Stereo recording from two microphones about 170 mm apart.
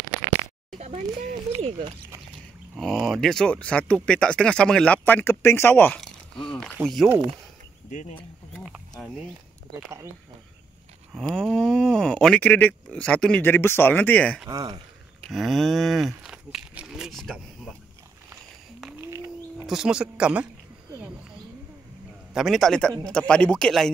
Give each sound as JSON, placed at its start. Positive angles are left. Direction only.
{"t": 0.7, "sound": "a sound", "side_deg": -40}
{"t": 1.6, "sound": "speech", "side_deg": -40}
{"t": 2.8, "sound": "speech", "side_deg": 0}
{"t": 11.1, "sound": "speech", "side_deg": 0}
{"t": 14.5, "sound": "speech", "side_deg": -25}
{"t": 15.2, "sound": "speech", "side_deg": 0}
{"t": 16.3, "sound": "a sound", "side_deg": -5}
{"t": 18.9, "sound": "bird", "side_deg": -15}
{"t": 19.6, "sound": "speech", "side_deg": 0}
{"t": 22.3, "sound": "speech", "side_deg": 0}